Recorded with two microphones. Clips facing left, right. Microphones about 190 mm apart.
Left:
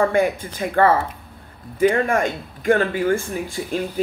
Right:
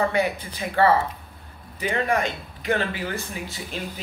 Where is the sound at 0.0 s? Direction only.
50° left (ahead or behind).